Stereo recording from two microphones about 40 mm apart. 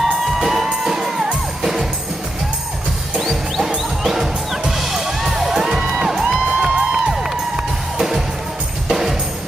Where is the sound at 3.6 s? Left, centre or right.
Centre.